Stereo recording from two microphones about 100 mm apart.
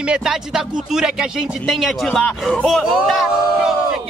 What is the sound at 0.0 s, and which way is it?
Speech, 5° right (ahead or behind).